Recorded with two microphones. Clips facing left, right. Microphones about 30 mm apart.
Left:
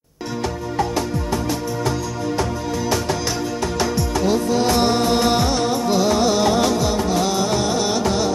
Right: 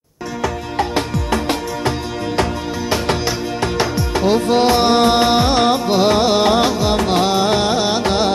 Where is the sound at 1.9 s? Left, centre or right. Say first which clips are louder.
Right 3 dB; right.